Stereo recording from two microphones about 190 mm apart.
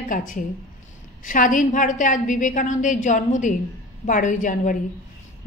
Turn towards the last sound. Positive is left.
turn(degrees=40)  # may be behind; listen again after turning